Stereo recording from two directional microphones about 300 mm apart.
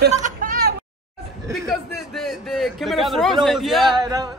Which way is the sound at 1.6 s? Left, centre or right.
Centre.